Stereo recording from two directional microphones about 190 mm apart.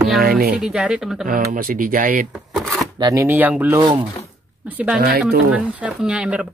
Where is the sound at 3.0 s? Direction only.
15° right (ahead or behind).